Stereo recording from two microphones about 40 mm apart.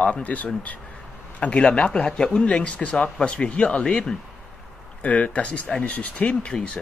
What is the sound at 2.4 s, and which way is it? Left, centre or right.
Speech, left.